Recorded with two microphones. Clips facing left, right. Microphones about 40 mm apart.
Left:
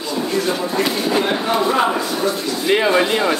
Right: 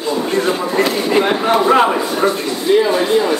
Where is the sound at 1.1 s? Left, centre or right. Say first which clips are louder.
Right 6 dB; right.